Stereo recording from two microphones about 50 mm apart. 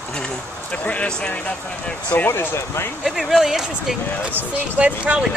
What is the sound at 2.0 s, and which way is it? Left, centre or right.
Speech, left.